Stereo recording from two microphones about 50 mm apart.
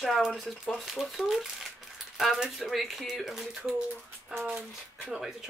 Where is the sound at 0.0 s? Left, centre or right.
Centre.